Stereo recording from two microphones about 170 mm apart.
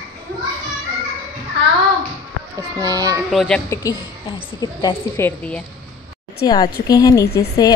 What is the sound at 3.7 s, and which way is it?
A woman's voice, 20° left (ahead or behind).